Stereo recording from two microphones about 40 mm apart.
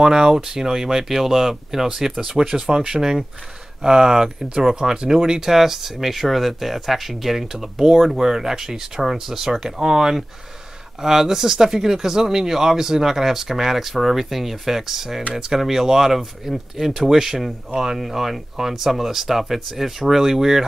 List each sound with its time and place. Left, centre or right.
0.0 s speech: centre
7.9 s speech: centre
8.2 s speech: centre